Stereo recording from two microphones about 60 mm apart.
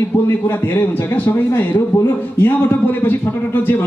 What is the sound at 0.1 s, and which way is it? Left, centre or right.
A man's voice, left.